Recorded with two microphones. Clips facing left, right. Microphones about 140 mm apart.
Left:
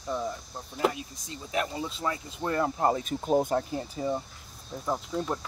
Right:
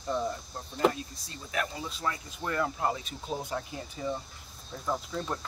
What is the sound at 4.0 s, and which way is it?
Speech, 30° left (ahead or behind).